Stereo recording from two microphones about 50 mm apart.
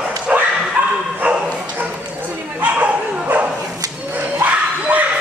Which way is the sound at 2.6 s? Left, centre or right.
Right.